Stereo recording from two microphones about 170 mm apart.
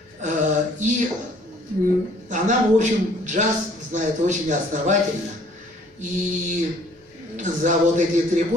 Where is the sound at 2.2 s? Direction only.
45° right (ahead or behind).